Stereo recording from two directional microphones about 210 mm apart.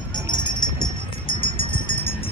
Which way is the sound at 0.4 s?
20° left (ahead or behind).